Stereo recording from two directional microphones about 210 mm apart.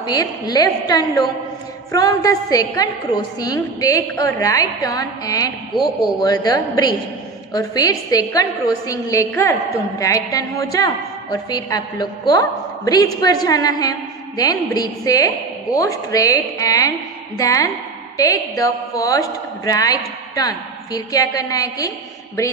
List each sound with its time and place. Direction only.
0.0 s a woman's voice: 20° left (ahead or behind)